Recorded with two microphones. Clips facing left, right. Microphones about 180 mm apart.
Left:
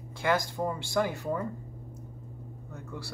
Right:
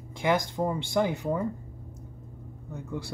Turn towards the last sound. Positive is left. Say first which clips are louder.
# right 5 dB
turn(degrees=-20)  # may be behind; listen again after turning